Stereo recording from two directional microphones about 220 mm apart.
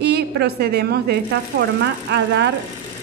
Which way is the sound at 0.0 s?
50° right (ahead or behind).